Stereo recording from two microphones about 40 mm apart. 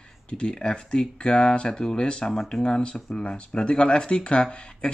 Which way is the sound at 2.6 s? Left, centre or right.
Left.